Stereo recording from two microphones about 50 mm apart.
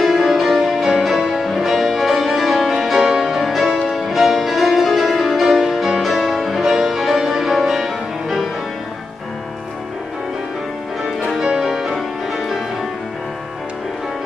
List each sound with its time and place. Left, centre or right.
0.0 s music: centre
11.4 s music: centre